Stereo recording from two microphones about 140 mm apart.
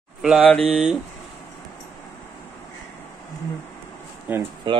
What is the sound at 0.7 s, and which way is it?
Speech, 5° right (ahead or behind).